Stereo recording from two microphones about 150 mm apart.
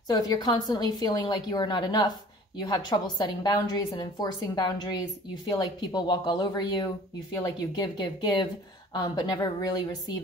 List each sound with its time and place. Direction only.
0.1 s a woman's voice: 25° left (ahead or behind)